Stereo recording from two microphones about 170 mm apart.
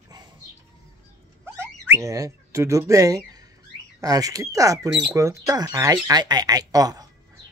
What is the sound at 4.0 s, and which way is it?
Speech, 20° right (ahead or behind).